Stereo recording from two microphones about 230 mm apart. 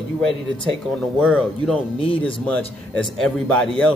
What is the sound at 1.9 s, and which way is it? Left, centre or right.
Speech, left.